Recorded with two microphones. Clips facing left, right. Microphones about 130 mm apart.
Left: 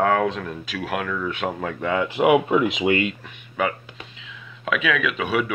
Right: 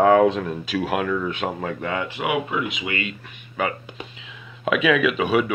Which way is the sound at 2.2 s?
45° left (ahead or behind).